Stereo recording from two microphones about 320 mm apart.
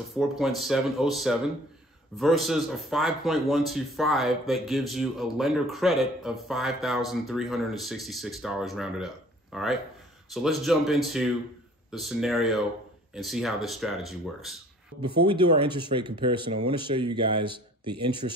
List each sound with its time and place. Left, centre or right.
0.1 s a man's voice: centre
15.0 s speech: centre